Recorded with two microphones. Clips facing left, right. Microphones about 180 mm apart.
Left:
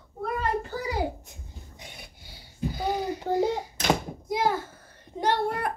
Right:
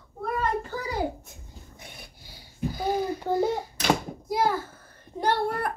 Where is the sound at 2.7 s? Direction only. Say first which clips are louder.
Right 2 dB; 20° left (ahead or behind).